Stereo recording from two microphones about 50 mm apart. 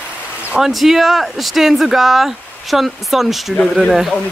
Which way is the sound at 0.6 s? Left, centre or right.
Centre.